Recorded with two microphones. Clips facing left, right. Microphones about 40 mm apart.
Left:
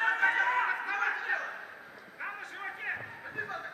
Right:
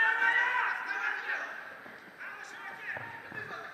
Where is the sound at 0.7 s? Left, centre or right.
Left.